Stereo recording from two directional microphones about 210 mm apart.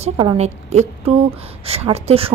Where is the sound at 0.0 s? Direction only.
25° right (ahead or behind).